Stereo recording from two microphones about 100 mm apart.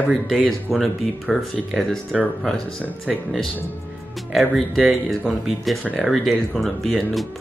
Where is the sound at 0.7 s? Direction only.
Centre (ahead or behind).